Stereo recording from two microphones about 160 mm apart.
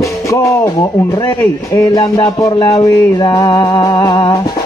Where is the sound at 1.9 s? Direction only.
20° left (ahead or behind).